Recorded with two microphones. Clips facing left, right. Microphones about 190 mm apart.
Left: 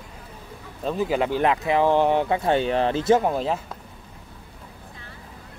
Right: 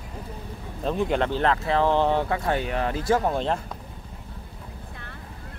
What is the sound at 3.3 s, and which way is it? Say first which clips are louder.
Speech: left 1 dB; 5° left (ahead or behind).